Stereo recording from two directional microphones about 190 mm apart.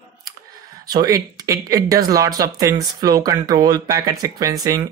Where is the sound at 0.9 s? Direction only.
20° right (ahead or behind).